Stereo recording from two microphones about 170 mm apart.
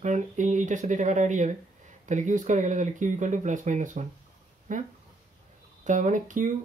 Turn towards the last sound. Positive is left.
turn(degrees=-50)  # may be behind; listen again after turning